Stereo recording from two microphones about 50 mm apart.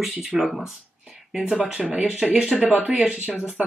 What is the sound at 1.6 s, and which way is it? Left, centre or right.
Speech, right.